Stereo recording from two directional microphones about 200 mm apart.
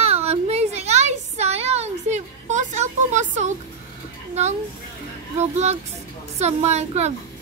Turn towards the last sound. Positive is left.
turn(degrees=-35)  # may be behind; listen again after turning